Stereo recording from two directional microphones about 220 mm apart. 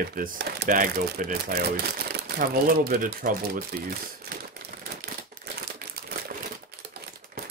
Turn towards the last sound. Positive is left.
turn(degrees=-45)  # may be behind; listen again after turning